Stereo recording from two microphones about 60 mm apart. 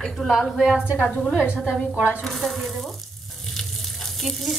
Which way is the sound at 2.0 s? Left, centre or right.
Right.